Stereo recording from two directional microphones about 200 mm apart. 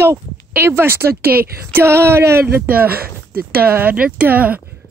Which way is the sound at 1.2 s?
50° right (ahead or behind).